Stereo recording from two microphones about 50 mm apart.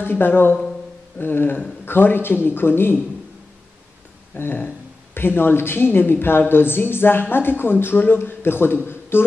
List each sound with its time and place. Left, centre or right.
0.0 s speech: left
4.4 s speech: left